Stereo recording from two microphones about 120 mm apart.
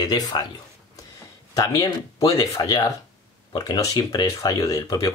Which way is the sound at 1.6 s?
30° left (ahead or behind).